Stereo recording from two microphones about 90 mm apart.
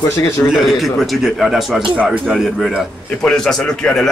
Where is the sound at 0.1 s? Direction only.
35° left (ahead or behind).